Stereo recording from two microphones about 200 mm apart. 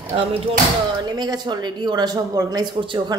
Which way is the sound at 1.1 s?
20° right (ahead or behind).